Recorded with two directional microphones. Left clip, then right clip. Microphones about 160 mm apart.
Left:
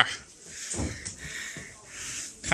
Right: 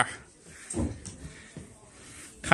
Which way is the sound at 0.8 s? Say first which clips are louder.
Right 3 dB; 35° right (ahead or behind).